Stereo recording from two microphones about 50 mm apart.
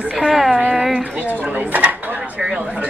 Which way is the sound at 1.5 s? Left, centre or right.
Right.